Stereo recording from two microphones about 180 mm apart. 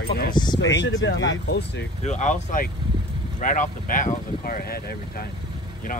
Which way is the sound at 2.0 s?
40° left (ahead or behind).